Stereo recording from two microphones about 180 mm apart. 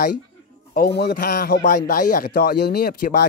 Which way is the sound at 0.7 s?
65° left (ahead or behind).